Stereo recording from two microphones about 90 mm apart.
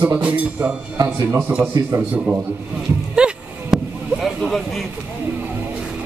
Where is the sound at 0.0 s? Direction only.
15° right (ahead or behind).